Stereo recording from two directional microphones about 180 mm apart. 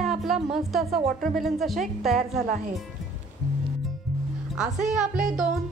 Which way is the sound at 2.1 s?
45° right (ahead or behind).